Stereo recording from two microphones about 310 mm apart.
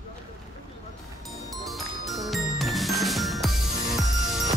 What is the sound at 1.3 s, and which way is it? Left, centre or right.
Music, centre.